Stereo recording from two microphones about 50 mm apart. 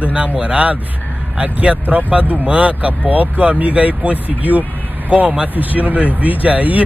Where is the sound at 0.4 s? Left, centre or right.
Right.